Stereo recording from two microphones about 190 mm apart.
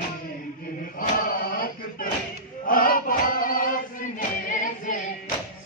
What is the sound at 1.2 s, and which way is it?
Choir, 50° left (ahead or behind).